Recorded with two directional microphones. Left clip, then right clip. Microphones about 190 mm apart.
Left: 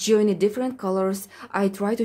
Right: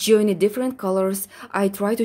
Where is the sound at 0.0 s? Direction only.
15° right (ahead or behind).